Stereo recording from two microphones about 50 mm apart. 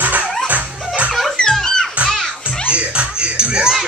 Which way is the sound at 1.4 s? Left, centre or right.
Centre.